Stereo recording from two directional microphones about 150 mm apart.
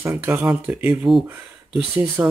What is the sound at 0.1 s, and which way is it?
Speech, 15° right (ahead or behind).